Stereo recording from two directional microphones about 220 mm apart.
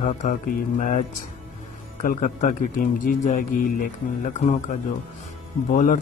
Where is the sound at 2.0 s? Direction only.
40° left (ahead or behind).